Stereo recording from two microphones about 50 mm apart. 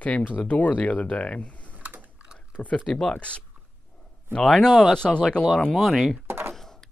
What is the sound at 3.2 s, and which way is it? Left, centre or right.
Speech, left.